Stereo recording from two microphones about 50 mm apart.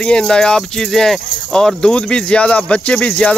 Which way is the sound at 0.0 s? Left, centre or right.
Centre.